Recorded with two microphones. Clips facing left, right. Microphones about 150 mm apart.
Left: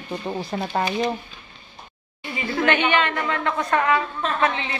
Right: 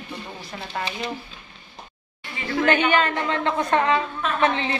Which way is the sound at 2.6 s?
35° right (ahead or behind).